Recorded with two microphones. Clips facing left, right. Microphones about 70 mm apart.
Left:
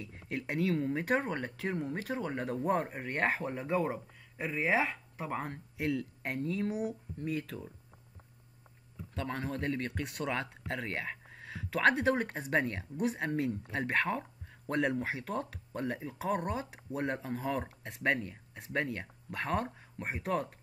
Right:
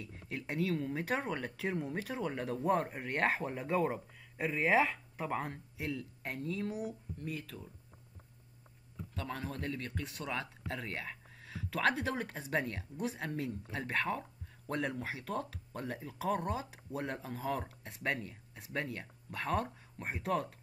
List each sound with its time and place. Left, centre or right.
0.3 s speech: left
0.7 s speech: left
1.2 s speech: centre
2.2 s speech: centre
5.8 s speech: left
9.1 s speech: left